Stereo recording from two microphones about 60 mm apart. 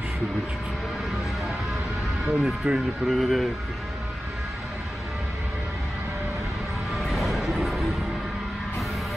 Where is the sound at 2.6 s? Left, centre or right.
Centre.